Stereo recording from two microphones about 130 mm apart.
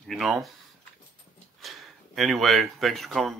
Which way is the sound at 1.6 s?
Centre (ahead or behind).